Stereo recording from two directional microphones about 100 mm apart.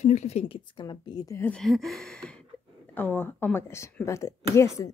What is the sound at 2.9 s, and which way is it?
Speech, 15° left (ahead or behind).